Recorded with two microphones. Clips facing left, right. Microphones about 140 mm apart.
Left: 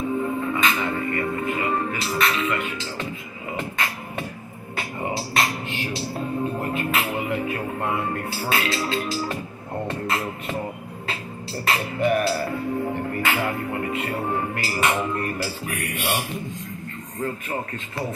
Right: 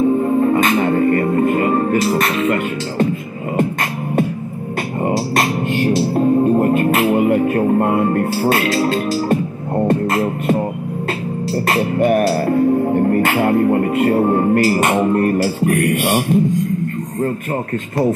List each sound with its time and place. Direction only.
0.2 s music: 45° right (ahead or behind)
9.8 s beatboxing: 45° right (ahead or behind)
11.6 s music: 45° right (ahead or behind)
16.1 s a man's voice: 55° right (ahead or behind)